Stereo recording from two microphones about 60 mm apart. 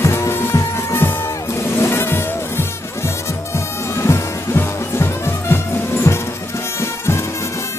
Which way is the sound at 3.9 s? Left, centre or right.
Left.